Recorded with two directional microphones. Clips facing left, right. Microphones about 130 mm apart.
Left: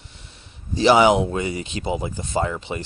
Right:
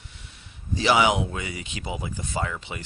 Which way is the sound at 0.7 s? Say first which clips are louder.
Left 6 dB; 30° left (ahead or behind).